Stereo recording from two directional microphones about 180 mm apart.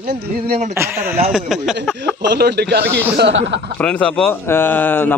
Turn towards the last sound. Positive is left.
turn(degrees=10)  # may be behind; listen again after turning